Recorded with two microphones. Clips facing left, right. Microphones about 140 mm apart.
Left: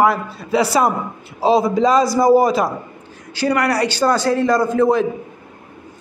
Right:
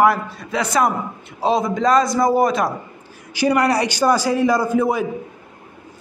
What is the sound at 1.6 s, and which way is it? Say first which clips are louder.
A man's voice: left 2 dB; 5° left (ahead or behind).